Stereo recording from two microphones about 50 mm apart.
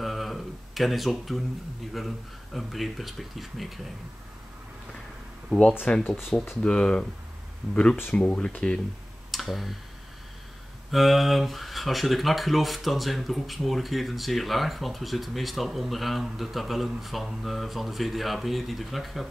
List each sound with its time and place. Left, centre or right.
0.0 s a sound: centre
2.0 s speech: centre
5.5 s speech: left
7.6 s speech: centre
8.1 s speech: left
9.3 s a sound: centre
10.9 s speech: centre